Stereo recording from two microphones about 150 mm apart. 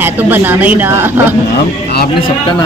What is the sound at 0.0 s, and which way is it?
Speech, 15° right (ahead or behind).